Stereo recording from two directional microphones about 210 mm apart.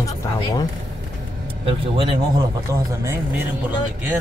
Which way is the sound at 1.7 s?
25° right (ahead or behind).